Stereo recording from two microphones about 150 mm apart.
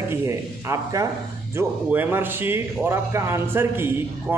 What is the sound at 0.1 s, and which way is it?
A man's voice, 20° right (ahead or behind).